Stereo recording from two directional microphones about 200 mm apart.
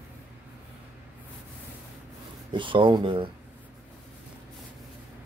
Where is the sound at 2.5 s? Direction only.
25° right (ahead or behind).